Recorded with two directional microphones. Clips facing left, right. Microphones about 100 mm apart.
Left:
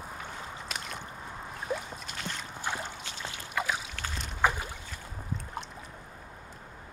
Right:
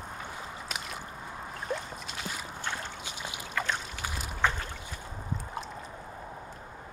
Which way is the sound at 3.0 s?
15° right (ahead or behind).